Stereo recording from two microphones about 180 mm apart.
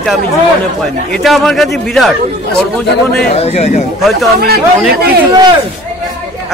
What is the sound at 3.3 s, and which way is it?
Speech, 35° left (ahead or behind).